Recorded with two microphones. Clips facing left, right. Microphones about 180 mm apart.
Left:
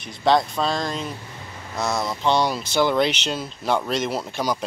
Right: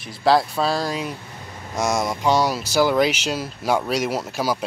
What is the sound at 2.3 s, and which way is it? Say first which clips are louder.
Speech: right 2 dB; 10° right (ahead or behind).